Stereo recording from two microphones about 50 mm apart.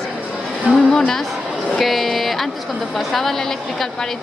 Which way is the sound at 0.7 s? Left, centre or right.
Right.